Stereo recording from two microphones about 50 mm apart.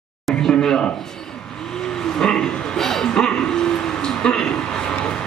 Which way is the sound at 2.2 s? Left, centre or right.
Centre.